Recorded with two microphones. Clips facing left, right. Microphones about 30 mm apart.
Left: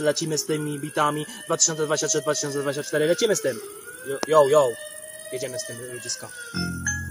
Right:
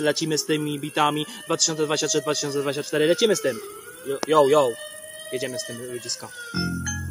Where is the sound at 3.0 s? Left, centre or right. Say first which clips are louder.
Right 2 dB; right.